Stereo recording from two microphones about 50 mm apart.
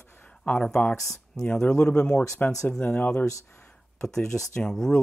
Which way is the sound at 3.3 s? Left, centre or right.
Left.